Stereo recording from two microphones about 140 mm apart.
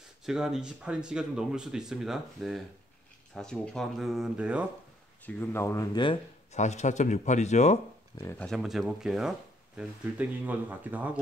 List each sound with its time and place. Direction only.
0.2 s speech: 5° right (ahead or behind)
5.2 s speech: 15° left (ahead or behind)
6.5 s speech: 55° left (ahead or behind)
8.4 s speech: centre (ahead or behind)